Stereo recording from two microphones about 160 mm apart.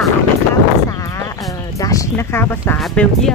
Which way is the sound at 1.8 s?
20° left (ahead or behind).